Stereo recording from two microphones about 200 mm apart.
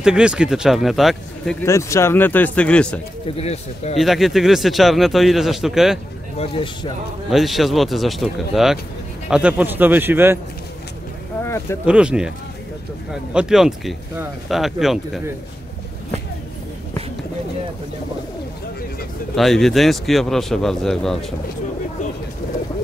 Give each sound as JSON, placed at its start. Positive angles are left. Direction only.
{"t": 0.0, "sound": "a man's voice", "side_deg": -5}
{"t": 1.7, "sound": "speech", "side_deg": 15}
{"t": 3.3, "sound": "speech", "side_deg": 30}
{"t": 4.0, "sound": "a man's voice", "side_deg": 0}
{"t": 6.3, "sound": "a man's voice", "side_deg": 30}
{"t": 7.2, "sound": "a man's voice", "side_deg": 0}
{"t": 11.4, "sound": "speech", "side_deg": 15}
{"t": 11.8, "sound": "a man's voice", "side_deg": -5}
{"t": 19.3, "sound": "a man's voice", "side_deg": 0}